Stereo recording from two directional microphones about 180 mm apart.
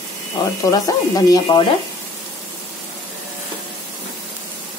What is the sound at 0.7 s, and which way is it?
Speech, 20° left (ahead or behind).